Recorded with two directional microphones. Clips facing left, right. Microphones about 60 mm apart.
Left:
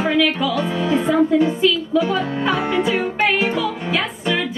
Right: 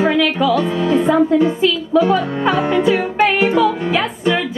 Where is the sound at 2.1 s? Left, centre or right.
Right.